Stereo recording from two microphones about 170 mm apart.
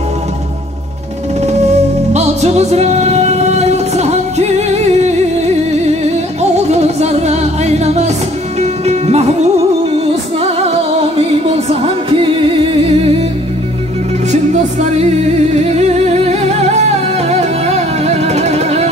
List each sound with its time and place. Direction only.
1.4 s music: 40° right (ahead or behind)
14.3 s music: 45° right (ahead or behind)